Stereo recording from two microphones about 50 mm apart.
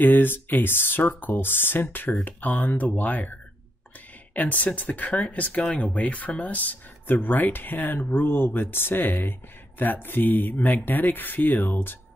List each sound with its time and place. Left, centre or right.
0.0 s speech: left